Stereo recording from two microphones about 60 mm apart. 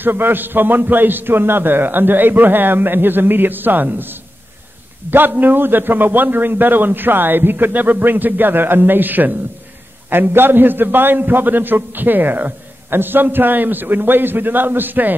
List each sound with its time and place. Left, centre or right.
0.0 s a man's voice: right